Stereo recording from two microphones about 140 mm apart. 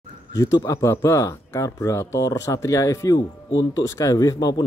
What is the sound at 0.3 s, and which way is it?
Speech, 25° left (ahead or behind).